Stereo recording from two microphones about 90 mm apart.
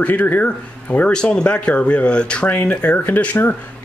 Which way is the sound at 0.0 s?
20° left (ahead or behind).